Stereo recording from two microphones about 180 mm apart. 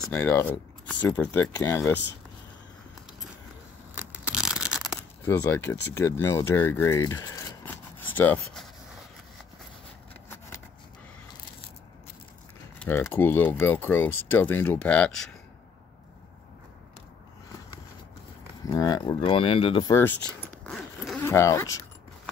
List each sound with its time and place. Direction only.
0.0 s speech: 10° left (ahead or behind)
3.9 s tearing: 10° right (ahead or behind)
5.2 s speech: 15° left (ahead or behind)
12.7 s typing: 10° left (ahead or behind)
13.1 s speech: 10° left (ahead or behind)
18.7 s speech: 20° left (ahead or behind)
19.9 s zipper: 10° left (ahead or behind)
21.2 s speech: 15° left (ahead or behind)